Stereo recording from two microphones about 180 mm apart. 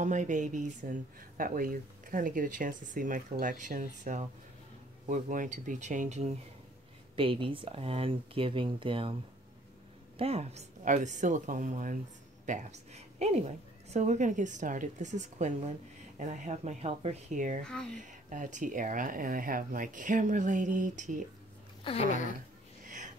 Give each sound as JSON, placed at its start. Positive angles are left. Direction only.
{"t": 0.0, "sound": "a woman's voice", "side_deg": -45}
{"t": 10.1, "sound": "a woman's voice", "side_deg": -35}